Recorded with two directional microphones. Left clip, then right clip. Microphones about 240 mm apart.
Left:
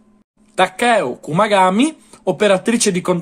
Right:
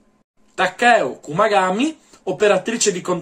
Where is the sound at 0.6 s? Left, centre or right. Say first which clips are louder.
Even; left.